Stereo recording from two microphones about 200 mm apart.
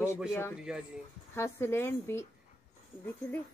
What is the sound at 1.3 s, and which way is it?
Speech, 15° left (ahead or behind).